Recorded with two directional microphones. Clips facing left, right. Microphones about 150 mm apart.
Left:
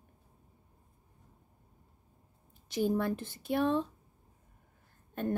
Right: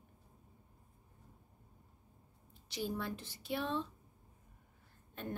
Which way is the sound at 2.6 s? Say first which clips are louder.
Left 10 dB; 50° left (ahead or behind).